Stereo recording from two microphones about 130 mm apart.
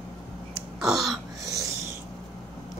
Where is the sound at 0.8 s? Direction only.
Centre (ahead or behind).